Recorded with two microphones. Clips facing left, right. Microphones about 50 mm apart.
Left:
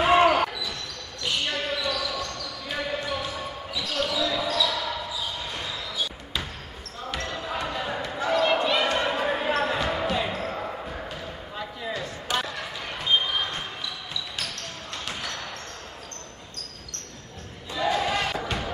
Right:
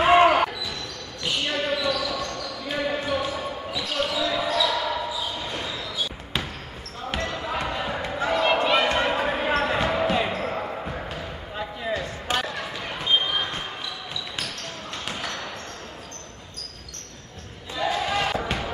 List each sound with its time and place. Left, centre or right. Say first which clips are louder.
0.0 s basketball bounce: right 2 dB; centre
7.2 s basketball bounce: right 3 dB; centre
12.4 s a sound: right 2 dB; centre
12.8 s basketball bounce: right 1 dB; centre
15.0 s basketball bounce: right 2 dB; centre
17.7 s basketball bounce: even; centre
18.2 s basketball bounce: right 2 dB; centre